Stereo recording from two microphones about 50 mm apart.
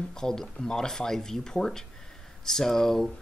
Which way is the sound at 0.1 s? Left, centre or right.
Centre.